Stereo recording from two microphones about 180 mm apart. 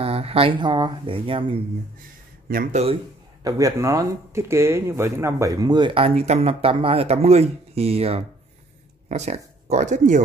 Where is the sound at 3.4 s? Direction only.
20° right (ahead or behind).